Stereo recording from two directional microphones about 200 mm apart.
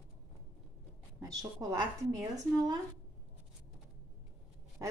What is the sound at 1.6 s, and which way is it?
Female singing, 20° right (ahead or behind).